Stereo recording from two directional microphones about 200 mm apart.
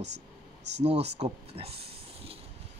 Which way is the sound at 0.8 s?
30° right (ahead or behind).